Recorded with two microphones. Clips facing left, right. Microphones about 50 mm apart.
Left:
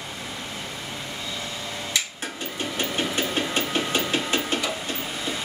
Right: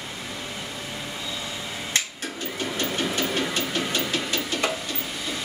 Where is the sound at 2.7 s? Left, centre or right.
Left.